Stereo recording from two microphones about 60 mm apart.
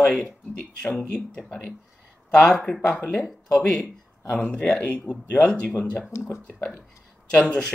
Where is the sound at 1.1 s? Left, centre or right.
Centre.